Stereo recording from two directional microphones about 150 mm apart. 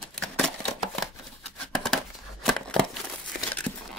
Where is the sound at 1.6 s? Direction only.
5° left (ahead or behind).